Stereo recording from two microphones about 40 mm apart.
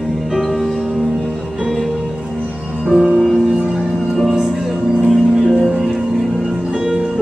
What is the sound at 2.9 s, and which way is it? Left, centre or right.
Music, centre.